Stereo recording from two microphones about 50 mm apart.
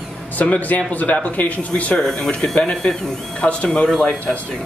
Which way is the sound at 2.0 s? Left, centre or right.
Centre.